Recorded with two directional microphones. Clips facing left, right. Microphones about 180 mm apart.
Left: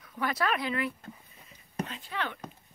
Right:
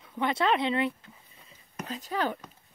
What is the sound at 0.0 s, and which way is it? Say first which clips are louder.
Speech: right 3 dB; 25° right (ahead or behind).